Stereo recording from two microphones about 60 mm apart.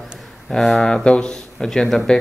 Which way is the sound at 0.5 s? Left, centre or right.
Centre.